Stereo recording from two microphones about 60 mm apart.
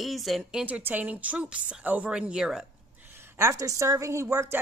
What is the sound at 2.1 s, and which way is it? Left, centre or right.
Speech, centre.